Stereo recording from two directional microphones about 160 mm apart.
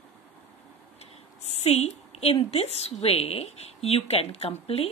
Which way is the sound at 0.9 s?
40° left (ahead or behind).